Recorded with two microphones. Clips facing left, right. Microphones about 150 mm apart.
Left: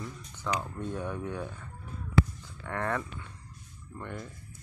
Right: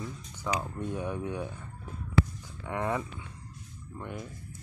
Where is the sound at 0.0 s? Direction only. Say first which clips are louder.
Right 1 dB; 10° right (ahead or behind).